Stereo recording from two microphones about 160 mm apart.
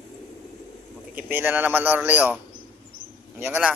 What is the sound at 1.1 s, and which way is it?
Speech, 15° right (ahead or behind).